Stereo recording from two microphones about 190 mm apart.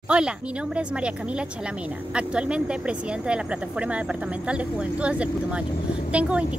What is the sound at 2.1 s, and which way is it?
Speech, 5° right (ahead or behind).